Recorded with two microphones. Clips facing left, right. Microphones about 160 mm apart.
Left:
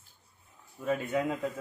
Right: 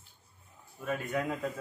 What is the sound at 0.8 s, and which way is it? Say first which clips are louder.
Speech: left 3 dB; 25° left (ahead or behind).